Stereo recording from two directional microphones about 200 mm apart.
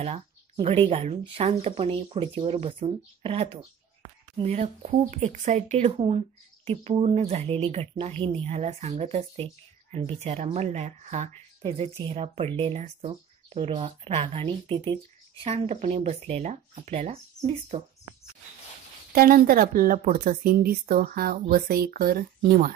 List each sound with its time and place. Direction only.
0.0 s speech: 30° right (ahead or behind)
19.1 s a woman's voice: 45° right (ahead or behind)